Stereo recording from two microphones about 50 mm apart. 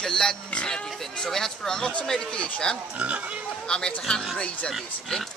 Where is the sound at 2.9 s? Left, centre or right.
Right.